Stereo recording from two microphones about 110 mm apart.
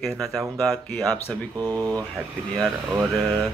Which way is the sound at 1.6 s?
35° right (ahead or behind).